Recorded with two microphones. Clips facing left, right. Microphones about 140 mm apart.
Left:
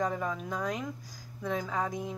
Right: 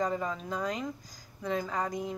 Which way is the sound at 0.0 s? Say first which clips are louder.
Even; centre (ahead or behind).